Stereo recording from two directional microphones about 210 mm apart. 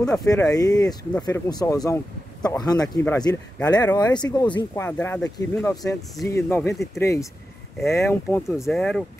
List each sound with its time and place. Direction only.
0.2 s speech: 15° left (ahead or behind)
4.8 s speech: 10° left (ahead or behind)